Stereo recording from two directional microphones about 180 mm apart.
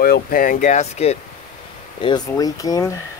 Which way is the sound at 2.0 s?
25° left (ahead or behind).